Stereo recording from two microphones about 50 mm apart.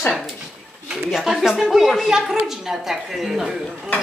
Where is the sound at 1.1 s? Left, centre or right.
Centre.